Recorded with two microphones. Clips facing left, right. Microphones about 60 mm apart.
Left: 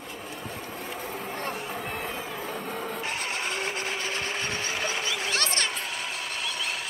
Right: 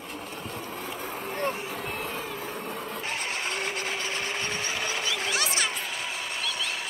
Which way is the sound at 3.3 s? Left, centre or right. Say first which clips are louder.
Left 1 dB; left.